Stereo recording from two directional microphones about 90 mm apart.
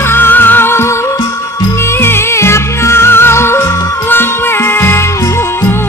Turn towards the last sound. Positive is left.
turn(degrees=25)  # may be behind; listen again after turning